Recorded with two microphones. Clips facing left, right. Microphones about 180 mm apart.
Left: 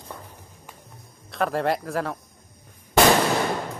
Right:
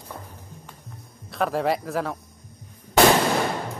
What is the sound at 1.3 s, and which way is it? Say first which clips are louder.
Speech: even; centre (ahead or behind).